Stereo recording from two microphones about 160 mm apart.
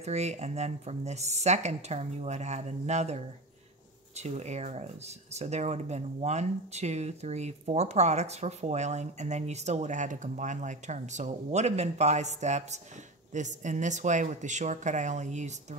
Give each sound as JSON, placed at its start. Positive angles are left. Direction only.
{"t": 0.0, "sound": "speech", "side_deg": -45}